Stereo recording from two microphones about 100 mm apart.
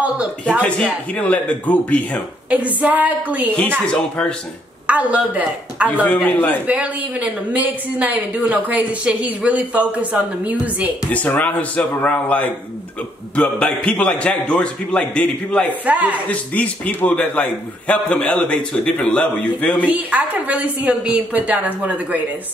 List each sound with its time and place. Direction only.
0.0 s speech: 10° right (ahead or behind)
0.6 s a man's voice: 15° left (ahead or behind)
2.5 s a woman's voice: 15° right (ahead or behind)
3.8 s a man's voice: 10° left (ahead or behind)
4.8 s a woman's voice: 15° right (ahead or behind)
6.0 s a man's voice: 15° left (ahead or behind)
6.7 s a woman's voice: 10° right (ahead or behind)
11.1 s a man's voice: 15° left (ahead or behind)
15.8 s a woman's voice: 15° right (ahead or behind)
16.3 s a man's voice: 15° left (ahead or behind)
19.9 s a woman's voice: 15° right (ahead or behind)